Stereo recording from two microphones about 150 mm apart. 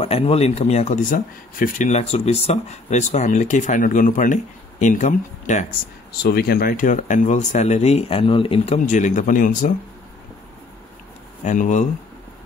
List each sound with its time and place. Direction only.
0.0 s speech: 40° left (ahead or behind)
1.1 s speech: 70° left (ahead or behind)
1.9 s speech: 45° left (ahead or behind)
6.2 s speech: 90° left; by 9.7 s 60° left (ahead or behind)
11.4 s speech: 55° left (ahead or behind)